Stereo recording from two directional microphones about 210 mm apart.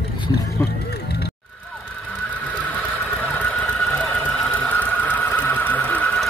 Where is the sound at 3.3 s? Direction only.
5° left (ahead or behind).